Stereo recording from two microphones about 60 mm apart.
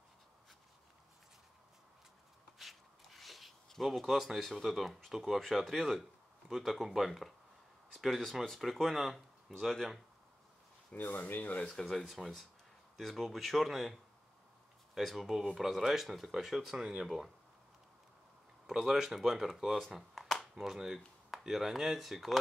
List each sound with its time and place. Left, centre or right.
2.6 s speech: centre
10.9 s speech: left
11.6 s speech: centre
15.0 s speech: centre
18.7 s speech: centre
20.2 s a sound: centre
21.3 s speech: centre